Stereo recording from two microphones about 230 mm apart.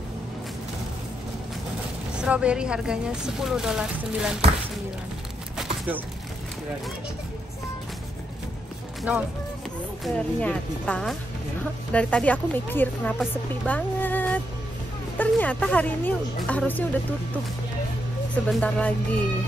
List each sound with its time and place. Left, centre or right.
2.1 s speech: centre
5.6 s a sound: centre
10.0 s speech: centre
18.3 s speech: centre